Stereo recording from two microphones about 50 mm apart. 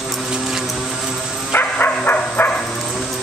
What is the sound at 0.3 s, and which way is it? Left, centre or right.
Vehicle, centre.